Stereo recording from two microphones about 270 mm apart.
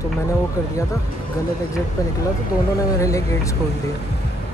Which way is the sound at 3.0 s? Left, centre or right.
Centre.